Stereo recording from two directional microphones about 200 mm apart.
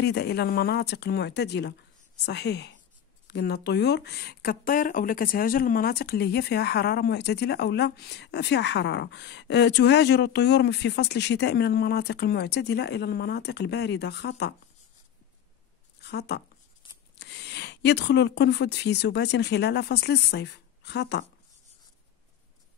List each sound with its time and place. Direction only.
0.0 s speech: 55° left (ahead or behind)
16.0 s speech: 55° left (ahead or behind)